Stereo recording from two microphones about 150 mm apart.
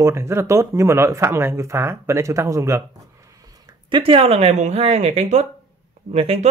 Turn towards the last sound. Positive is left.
turn(degrees=-45)  # may be behind; listen again after turning